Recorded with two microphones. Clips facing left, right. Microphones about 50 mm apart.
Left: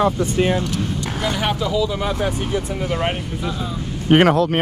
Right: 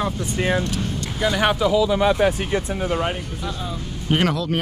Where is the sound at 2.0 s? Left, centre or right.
Right.